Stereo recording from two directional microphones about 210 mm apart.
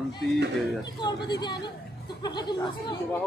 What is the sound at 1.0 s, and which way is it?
Speech, 20° left (ahead or behind).